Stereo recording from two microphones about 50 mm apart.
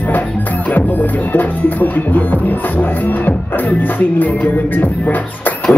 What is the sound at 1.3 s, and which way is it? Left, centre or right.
Music, left.